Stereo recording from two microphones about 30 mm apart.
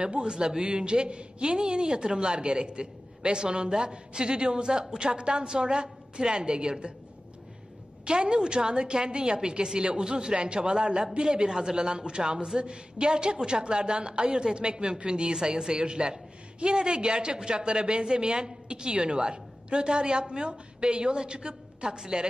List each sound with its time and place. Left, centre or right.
0.0 s a woman's voice: right
8.0 s a woman's voice: right